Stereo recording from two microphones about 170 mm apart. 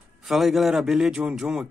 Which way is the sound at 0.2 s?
Centre (ahead or behind).